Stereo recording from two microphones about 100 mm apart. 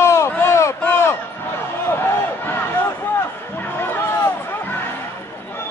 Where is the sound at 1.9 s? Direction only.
20° left (ahead or behind).